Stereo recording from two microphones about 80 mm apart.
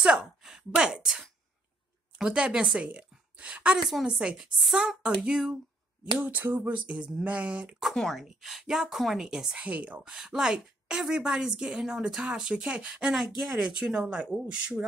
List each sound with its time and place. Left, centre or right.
0.0 s a sound: centre
2.1 s a woman's voice: centre
6.1 s a woman's voice: right
7.9 s speech: centre
9.6 s a woman's voice: centre
13.5 s a woman's voice: centre